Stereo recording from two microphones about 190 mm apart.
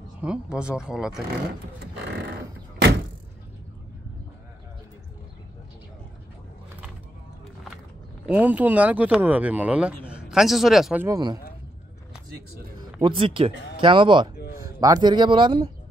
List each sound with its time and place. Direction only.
0.2 s speech: 5° right (ahead or behind)
8.3 s speech: 10° right (ahead or behind)
11.1 s speech: 20° right (ahead or behind)
13.0 s speech: 25° right (ahead or behind)